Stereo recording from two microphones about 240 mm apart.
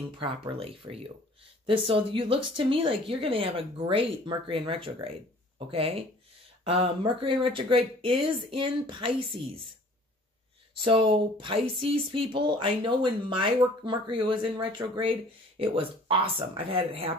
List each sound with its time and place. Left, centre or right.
0.2 s speech: right
10.8 s speech: right